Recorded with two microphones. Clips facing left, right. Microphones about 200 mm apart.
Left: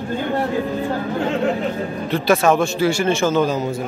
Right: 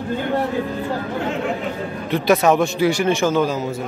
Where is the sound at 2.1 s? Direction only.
20° right (ahead or behind).